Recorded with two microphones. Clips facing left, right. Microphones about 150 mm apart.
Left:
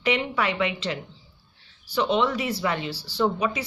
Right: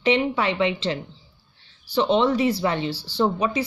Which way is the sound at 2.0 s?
30° right (ahead or behind).